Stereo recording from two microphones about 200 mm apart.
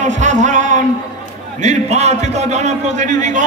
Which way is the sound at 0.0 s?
35° right (ahead or behind).